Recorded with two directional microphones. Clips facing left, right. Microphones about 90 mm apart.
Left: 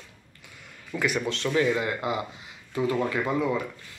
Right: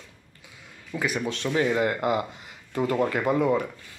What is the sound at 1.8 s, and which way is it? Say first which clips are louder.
Speech: right 4 dB; 50° right (ahead or behind).